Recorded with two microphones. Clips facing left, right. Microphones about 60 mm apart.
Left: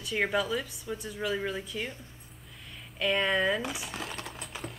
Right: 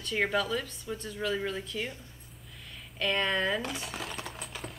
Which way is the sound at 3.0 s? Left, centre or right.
Centre.